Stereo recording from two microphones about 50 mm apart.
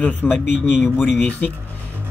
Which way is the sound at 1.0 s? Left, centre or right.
Left.